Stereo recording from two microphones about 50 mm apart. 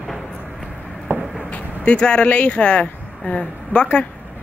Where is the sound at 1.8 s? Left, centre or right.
Left.